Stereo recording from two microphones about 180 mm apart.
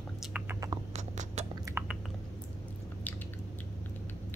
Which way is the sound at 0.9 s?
40° right (ahead or behind).